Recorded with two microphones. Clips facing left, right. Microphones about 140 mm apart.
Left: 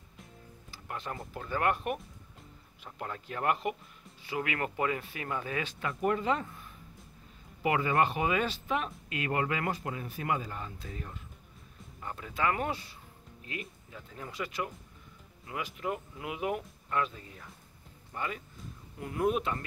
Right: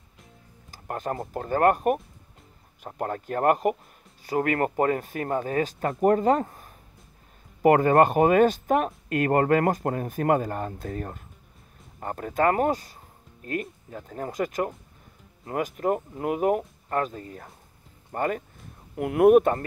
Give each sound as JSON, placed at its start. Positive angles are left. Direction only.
{"t": 0.7, "sound": "speech", "side_deg": -45}
{"t": 18.9, "sound": "speech", "side_deg": -65}